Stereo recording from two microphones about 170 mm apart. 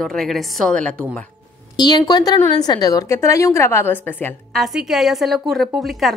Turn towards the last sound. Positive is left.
turn(degrees=0)  # may be behind; listen again after turning